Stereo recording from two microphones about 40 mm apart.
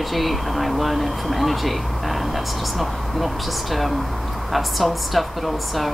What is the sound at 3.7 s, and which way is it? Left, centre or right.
Speech, centre.